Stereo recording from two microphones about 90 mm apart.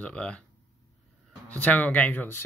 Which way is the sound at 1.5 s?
15° left (ahead or behind).